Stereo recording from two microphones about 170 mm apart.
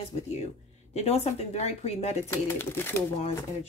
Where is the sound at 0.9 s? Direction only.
40° left (ahead or behind).